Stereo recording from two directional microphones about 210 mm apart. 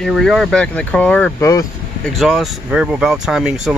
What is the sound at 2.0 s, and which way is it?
Speech, centre (ahead or behind).